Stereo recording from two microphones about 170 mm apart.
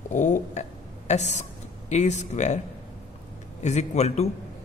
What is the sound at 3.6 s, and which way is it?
Speech, 40° left (ahead or behind).